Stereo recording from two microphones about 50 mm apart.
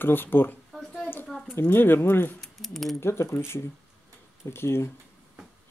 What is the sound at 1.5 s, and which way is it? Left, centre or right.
Speech, left.